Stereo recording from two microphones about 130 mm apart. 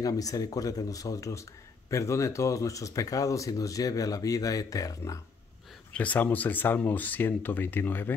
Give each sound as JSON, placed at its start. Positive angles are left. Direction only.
{"t": 0.0, "sound": "speech", "side_deg": 30}
{"t": 5.9, "sound": "speech", "side_deg": 10}